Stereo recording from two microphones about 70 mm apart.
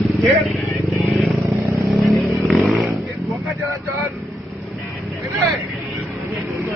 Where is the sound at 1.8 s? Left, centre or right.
Centre.